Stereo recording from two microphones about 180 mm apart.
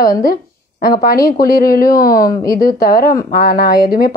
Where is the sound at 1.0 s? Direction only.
55° left (ahead or behind).